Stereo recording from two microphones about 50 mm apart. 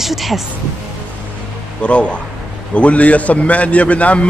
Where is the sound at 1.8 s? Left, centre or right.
Left.